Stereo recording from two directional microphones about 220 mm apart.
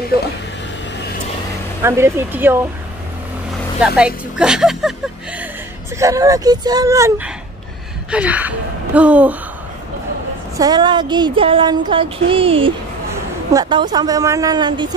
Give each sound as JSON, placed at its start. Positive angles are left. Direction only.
{"t": 0.1, "sound": "speech", "side_deg": 45}
{"t": 1.8, "sound": "a woman's voice", "side_deg": -10}
{"t": 3.8, "sound": "speech", "side_deg": -5}
{"t": 5.9, "sound": "a woman's voice", "side_deg": -15}
{"t": 10.6, "sound": "a woman's voice", "side_deg": -20}